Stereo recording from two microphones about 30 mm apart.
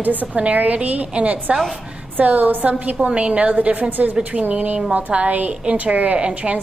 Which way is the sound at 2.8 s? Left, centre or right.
Right.